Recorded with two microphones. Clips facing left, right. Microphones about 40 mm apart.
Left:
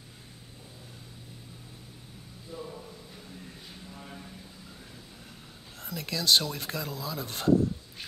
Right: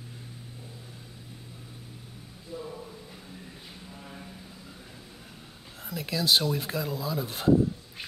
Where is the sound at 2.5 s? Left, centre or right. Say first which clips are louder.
Right 2 dB; centre.